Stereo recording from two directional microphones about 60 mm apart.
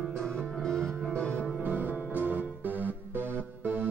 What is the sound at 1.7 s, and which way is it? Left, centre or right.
Music, right.